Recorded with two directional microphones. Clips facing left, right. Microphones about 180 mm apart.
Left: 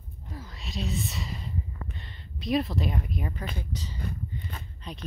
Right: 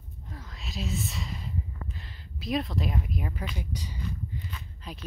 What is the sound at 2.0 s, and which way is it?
Speech, centre (ahead or behind).